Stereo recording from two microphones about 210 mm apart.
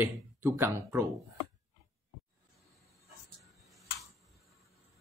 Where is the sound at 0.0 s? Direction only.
10° right (ahead or behind).